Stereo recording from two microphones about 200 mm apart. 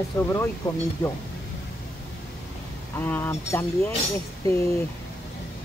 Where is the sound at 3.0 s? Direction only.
10° left (ahead or behind).